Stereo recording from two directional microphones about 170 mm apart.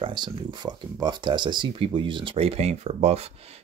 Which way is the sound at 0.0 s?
30° right (ahead or behind).